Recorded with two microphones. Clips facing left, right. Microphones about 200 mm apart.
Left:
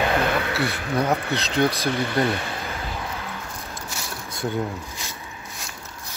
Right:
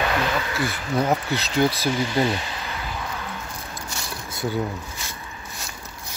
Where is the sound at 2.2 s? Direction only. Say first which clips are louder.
Even; 55° left (ahead or behind).